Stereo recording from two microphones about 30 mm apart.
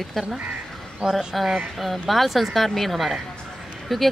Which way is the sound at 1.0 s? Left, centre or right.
Centre.